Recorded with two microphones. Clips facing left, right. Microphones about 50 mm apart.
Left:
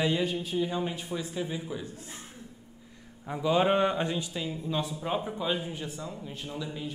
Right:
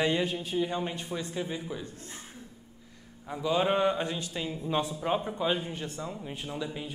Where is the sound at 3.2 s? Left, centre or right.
Centre.